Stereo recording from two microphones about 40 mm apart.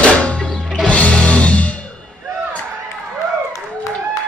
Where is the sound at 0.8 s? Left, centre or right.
Left.